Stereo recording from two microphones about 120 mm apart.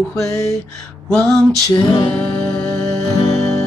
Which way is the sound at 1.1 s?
5° left (ahead or behind).